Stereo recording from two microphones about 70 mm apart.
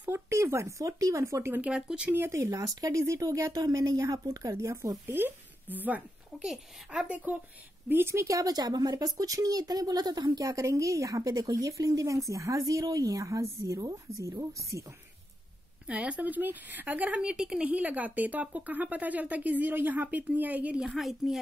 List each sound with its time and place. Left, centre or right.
0.1 s speech: right
1.7 s speech: centre
2.3 s a woman's voice: right
3.5 s a woman's voice: right
5.0 s speech: right
6.4 s a woman's voice: centre
7.1 s speech: centre
7.9 s speech: right
10.5 s a woman's voice: right
13.7 s a woman's voice: right
15.9 s speech: centre
17.6 s speech: right
20.9 s a woman's voice: centre